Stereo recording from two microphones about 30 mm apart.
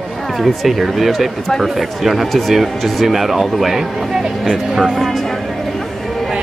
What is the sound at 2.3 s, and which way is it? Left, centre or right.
Speech, centre.